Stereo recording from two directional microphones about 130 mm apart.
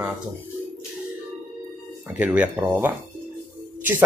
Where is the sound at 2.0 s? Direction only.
10° right (ahead or behind).